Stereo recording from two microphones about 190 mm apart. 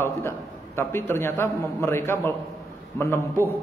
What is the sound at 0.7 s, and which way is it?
A man's voice, 10° left (ahead or behind).